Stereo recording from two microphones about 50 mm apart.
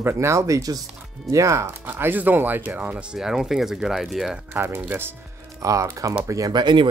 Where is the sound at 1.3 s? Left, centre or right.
Right.